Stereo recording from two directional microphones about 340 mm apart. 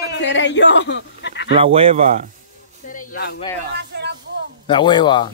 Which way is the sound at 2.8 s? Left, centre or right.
Left.